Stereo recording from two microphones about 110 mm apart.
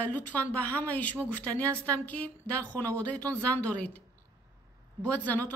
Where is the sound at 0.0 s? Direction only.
15° left (ahead or behind).